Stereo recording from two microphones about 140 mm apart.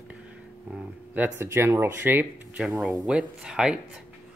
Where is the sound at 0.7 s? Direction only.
10° right (ahead or behind).